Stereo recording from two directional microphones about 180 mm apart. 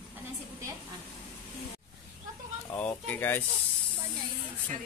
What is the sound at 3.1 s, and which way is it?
Speech, 10° left (ahead or behind).